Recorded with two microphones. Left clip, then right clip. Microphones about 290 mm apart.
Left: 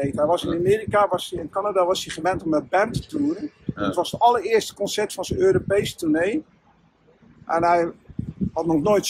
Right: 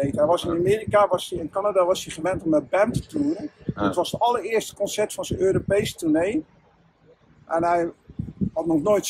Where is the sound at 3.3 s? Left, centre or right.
Right.